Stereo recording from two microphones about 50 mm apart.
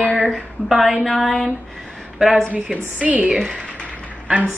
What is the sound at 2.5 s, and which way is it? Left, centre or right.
Speech, right.